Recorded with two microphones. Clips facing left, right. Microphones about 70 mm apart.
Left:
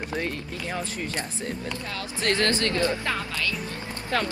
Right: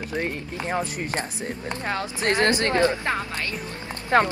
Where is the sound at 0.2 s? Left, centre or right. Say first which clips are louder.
Right 2 dB; right.